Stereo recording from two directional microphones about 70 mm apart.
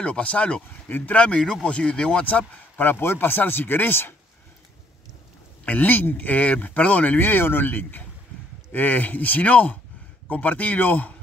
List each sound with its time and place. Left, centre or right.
0.0 s speech: centre
5.7 s speech: left